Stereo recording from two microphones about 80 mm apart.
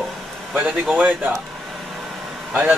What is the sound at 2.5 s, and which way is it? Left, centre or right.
Speech, centre.